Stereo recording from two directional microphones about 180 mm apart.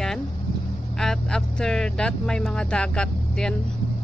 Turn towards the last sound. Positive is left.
turn(degrees=5)  # may be behind; listen again after turning